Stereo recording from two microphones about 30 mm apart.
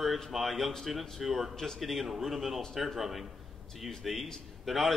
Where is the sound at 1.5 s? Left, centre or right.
Centre.